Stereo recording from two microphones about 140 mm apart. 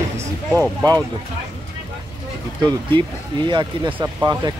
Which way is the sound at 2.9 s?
35° right (ahead or behind).